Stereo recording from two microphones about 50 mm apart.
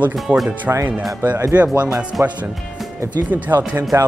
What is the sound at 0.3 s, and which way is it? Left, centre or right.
Speech, right.